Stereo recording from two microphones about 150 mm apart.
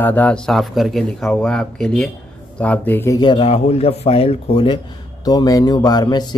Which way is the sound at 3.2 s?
35° left (ahead or behind).